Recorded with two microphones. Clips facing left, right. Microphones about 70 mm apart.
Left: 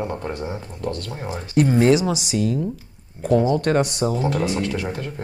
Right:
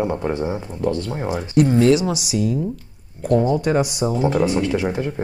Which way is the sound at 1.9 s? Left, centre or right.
Centre.